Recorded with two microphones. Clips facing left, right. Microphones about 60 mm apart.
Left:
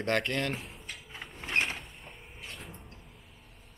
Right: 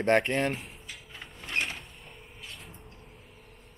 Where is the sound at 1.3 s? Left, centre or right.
Left.